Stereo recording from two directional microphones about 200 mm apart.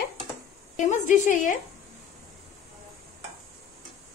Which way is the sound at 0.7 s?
40° left (ahead or behind).